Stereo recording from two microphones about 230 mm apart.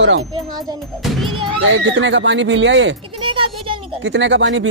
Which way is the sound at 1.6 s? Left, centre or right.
Right.